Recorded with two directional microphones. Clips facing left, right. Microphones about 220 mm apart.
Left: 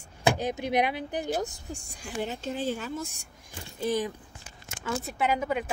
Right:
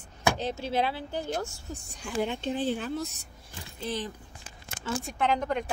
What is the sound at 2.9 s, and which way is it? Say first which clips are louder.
A woman's voice: right 2 dB; 10° left (ahead or behind).